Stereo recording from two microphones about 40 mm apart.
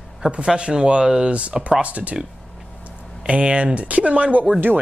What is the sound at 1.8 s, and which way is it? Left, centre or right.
Speech, right.